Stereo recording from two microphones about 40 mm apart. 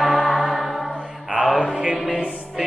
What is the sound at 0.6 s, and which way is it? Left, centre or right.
A capella, centre.